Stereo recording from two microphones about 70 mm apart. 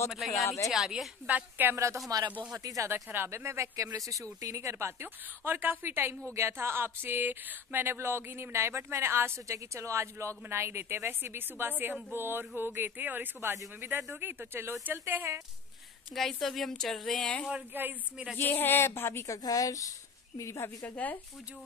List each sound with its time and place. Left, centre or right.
0.1 s a woman's voice: centre
1.2 s a woman's voice: right
2.0 s speech: right
2.5 s speech: right
2.9 s speech: right
5.0 s a sound: right
16.2 s a woman's voice: centre
17.6 s a woman's voice: right
18.4 s speech: left
19.2 s a woman's voice: left
20.3 s a woman's voice: left
20.8 s speech: left